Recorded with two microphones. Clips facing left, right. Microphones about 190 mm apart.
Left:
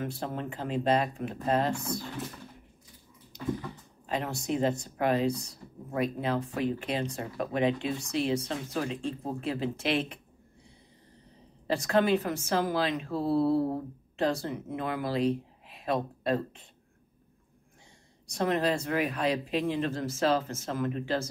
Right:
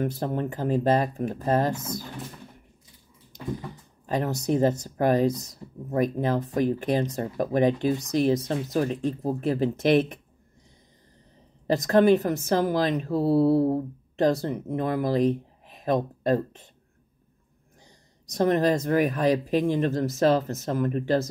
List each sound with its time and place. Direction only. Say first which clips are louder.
0.0 s speech: right 7 dB; 40° right (ahead or behind)
4.1 s speech: right 6 dB; 40° right (ahead or behind)
11.7 s speech: right 6 dB; 40° right (ahead or behind)
18.2 s speech: right 6 dB; 40° right (ahead or behind)